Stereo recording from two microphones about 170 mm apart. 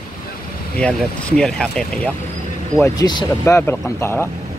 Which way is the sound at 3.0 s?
25° left (ahead or behind).